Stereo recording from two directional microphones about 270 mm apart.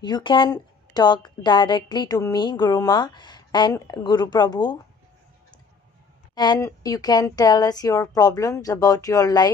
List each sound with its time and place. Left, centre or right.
0.0 s a woman's voice: centre
6.3 s a woman's voice: centre